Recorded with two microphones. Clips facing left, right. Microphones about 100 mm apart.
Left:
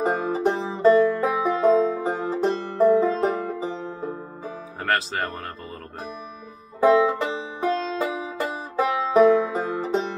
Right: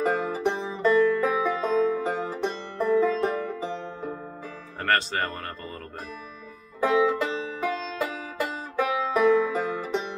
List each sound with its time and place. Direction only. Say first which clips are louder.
0.0 s music: left 3 dB; 30° left (ahead or behind)
4.8 s speech: even; centre (ahead or behind)
6.8 s music: left 4 dB; 20° left (ahead or behind)